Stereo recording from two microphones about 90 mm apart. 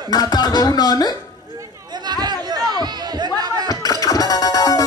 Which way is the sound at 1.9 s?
50° right (ahead or behind).